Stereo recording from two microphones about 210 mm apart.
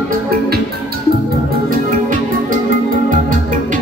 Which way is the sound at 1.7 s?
40° right (ahead or behind).